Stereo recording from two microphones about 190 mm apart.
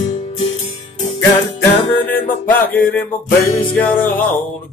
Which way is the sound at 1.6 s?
10° left (ahead or behind).